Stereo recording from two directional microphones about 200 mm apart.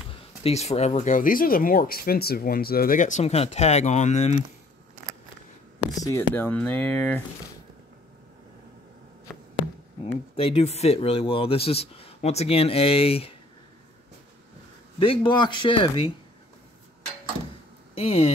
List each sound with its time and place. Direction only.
0.4 s speech: 30° left (ahead or behind)
5.9 s speech: 15° left (ahead or behind)
10.3 s speech: 30° left (ahead or behind)
15.0 s speech: 25° left (ahead or behind)
17.9 s speech: 30° left (ahead or behind)